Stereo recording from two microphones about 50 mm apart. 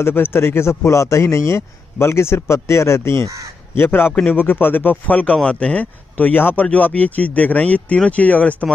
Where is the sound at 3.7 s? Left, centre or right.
Left.